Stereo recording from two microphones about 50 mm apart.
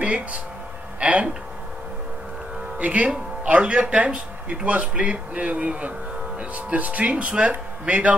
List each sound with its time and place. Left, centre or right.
0.0 s speech: right
2.8 s speech: right